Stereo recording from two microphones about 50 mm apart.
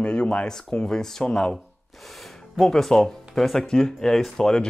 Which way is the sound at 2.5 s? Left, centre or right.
Centre.